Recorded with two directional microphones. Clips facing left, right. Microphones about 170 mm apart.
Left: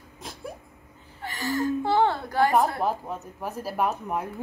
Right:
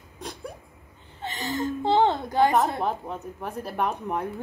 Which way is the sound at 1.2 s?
20° right (ahead or behind).